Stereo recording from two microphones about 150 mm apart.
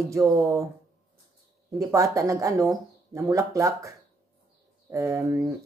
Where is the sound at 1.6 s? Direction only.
20° right (ahead or behind).